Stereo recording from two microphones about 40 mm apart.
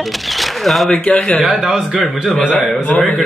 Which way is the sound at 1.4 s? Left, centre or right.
Centre.